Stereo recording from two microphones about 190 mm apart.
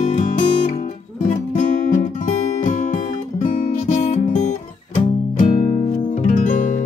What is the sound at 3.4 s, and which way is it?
Music, 40° left (ahead or behind).